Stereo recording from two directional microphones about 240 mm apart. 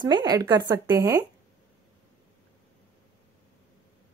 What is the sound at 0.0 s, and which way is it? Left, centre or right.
A woman's voice, centre.